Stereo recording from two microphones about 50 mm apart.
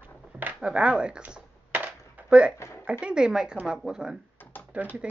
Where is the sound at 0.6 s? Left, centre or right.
Right.